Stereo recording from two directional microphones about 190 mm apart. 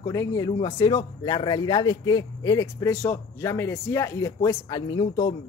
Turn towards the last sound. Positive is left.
turn(degrees=20)  # may be behind; listen again after turning